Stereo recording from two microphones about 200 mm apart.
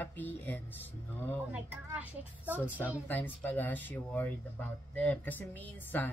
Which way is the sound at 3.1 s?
10° left (ahead or behind).